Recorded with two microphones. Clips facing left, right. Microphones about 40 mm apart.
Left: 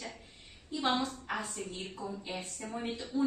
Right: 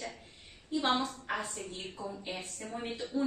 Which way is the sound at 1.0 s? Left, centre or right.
Right.